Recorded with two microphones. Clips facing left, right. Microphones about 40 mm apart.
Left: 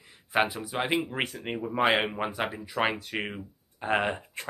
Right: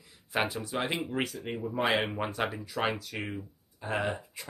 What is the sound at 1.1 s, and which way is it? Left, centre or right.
Speech, left.